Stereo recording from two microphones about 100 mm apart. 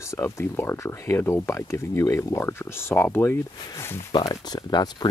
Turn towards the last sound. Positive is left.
turn(degrees=45)  # may be behind; listen again after turning